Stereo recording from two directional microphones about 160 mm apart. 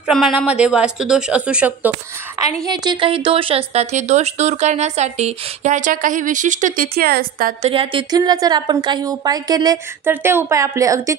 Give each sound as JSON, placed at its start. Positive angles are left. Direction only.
{"t": 0.0, "sound": "a woman's voice", "side_deg": -5}
{"t": 2.6, "sound": "speech", "side_deg": -25}
{"t": 7.6, "sound": "a woman's voice", "side_deg": -35}